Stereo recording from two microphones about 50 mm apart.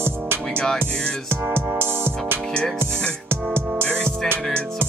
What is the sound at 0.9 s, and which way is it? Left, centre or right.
Music, centre.